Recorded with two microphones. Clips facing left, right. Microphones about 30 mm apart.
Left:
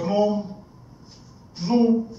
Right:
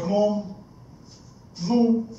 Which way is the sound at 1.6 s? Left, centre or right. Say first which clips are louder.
Left 1 dB; left.